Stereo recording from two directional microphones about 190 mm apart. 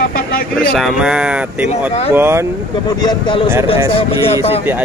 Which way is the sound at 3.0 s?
25° left (ahead or behind).